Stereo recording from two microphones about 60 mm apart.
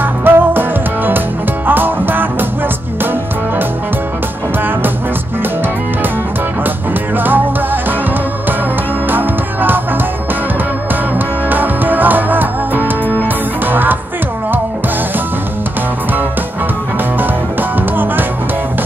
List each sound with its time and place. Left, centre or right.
0.0 s music: right
7.2 s music: right
9.1 s music: right
11.1 s music: right
17.2 s music: right